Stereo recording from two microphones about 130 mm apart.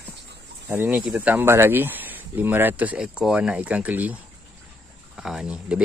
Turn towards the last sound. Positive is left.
turn(degrees=-5)  # may be behind; listen again after turning